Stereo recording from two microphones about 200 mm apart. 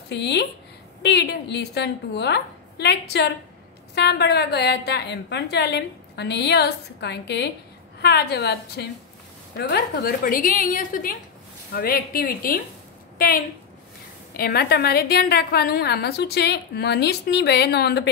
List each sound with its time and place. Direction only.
0.1 s a woman's voice: 60° left (ahead or behind)
14.3 s a woman's voice: 50° left (ahead or behind)